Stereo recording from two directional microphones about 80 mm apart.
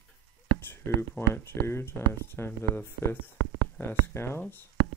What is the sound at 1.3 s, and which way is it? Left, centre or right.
Speech, left.